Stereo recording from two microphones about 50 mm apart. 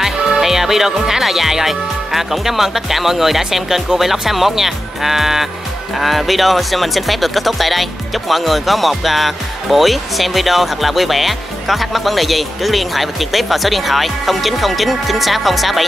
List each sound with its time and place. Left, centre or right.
0.0 s speech: centre